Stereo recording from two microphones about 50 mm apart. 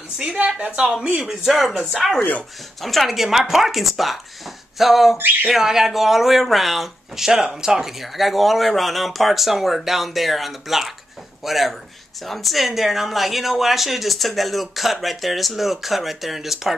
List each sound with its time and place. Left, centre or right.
0.2 s a woman's voice: right
0.7 s speech: centre
5.1 s speech: right
5.5 s speech: centre